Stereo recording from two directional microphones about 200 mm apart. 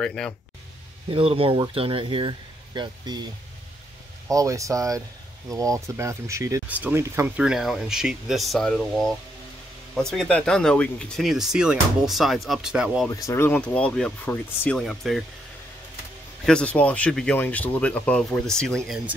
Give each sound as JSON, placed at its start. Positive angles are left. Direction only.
{"t": 0.0, "sound": "speech", "side_deg": 5}
{"t": 1.1, "sound": "speech", "side_deg": -25}
{"t": 4.3, "sound": "speech", "side_deg": -15}
{"t": 13.1, "sound": "speech", "side_deg": 15}
{"t": 16.4, "sound": "speech", "side_deg": 5}